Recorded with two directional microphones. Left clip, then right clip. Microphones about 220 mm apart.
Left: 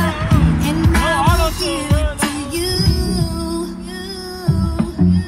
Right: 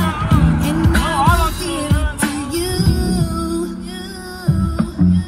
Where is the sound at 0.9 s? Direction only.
25° left (ahead or behind).